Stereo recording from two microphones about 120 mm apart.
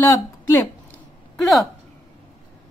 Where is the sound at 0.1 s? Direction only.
25° left (ahead or behind).